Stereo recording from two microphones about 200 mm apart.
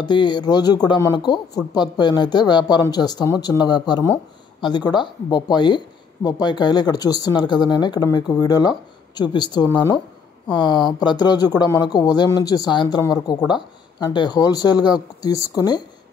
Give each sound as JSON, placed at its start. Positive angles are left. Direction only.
{"t": 0.0, "sound": "speech", "side_deg": 20}